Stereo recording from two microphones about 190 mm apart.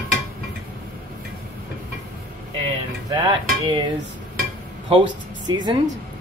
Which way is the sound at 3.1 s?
25° right (ahead or behind).